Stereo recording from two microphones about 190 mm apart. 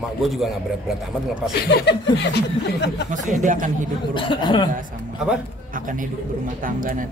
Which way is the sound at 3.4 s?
45° right (ahead or behind).